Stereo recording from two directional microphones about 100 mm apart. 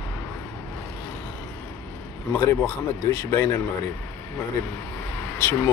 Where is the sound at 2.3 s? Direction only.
25° left (ahead or behind).